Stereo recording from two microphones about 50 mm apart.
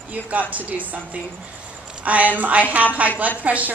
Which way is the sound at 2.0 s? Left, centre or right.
Right.